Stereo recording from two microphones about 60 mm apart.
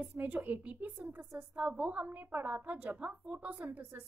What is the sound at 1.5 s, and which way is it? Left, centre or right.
A woman's voice, right.